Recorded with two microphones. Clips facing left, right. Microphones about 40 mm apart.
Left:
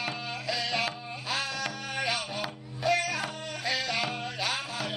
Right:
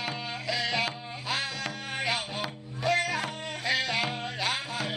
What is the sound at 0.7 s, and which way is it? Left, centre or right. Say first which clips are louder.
Music: right 1 dB; centre.